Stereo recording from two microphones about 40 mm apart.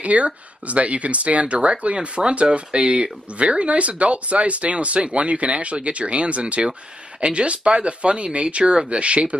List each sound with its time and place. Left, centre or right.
0.0 s speech: right